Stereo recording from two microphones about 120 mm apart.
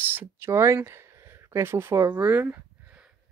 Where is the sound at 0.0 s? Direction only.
15° right (ahead or behind).